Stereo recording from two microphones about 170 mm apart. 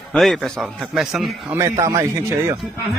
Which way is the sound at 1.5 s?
15° right (ahead or behind).